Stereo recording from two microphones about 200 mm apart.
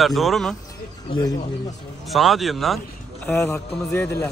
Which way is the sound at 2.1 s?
Centre (ahead or behind).